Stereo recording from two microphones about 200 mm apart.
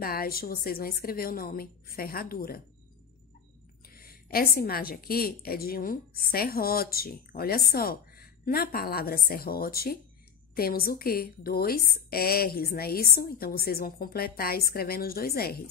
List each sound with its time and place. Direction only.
0.0 s a woman's voice: 45° left (ahead or behind)
3.9 s a woman's voice: 50° left (ahead or behind)